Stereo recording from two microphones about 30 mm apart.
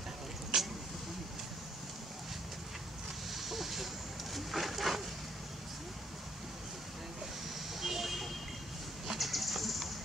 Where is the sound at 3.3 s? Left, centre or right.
Centre.